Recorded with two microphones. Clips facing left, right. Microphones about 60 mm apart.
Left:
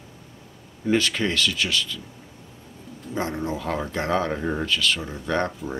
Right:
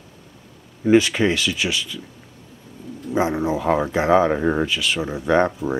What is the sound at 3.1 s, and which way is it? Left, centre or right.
Speech, centre.